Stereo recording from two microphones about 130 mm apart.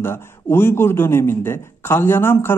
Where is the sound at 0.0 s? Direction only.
20° left (ahead or behind).